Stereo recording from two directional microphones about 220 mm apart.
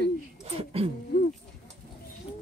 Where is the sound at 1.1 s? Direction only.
50° left (ahead or behind).